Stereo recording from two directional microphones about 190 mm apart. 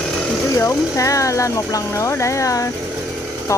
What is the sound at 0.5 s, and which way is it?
Speech, 15° left (ahead or behind).